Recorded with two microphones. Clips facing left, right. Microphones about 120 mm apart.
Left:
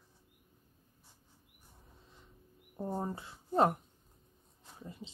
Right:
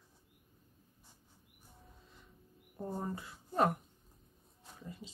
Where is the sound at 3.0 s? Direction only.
25° left (ahead or behind).